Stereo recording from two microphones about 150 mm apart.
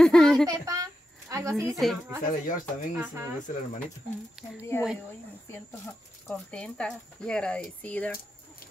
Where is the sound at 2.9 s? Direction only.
15° right (ahead or behind).